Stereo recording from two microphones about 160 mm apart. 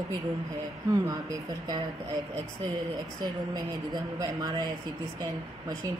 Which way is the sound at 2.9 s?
25° right (ahead or behind).